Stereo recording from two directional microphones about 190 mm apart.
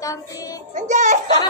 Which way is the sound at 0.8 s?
40° right (ahead or behind).